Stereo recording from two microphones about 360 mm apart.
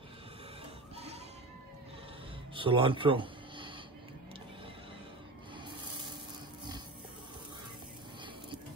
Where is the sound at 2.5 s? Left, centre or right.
Centre.